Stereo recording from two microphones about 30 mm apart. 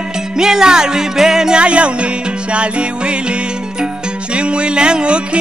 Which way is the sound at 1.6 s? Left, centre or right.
Right.